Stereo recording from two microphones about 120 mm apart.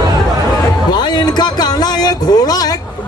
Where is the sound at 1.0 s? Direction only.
35° left (ahead or behind).